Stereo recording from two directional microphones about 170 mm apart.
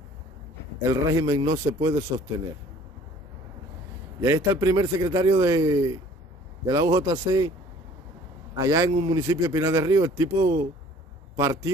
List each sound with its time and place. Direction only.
0.8 s a man's voice: 20° right (ahead or behind)
4.2 s a man's voice: 15° right (ahead or behind)
8.5 s a man's voice: 20° right (ahead or behind)
9.2 s a man's voice: 15° right (ahead or behind)